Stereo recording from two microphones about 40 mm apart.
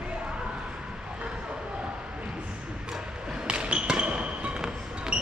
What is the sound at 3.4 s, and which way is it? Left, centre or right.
Basketball bounce, right.